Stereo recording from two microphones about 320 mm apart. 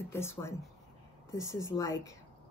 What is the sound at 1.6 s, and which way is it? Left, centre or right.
Speech, centre.